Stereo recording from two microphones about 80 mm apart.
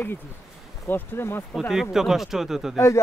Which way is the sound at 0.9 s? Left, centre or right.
Left.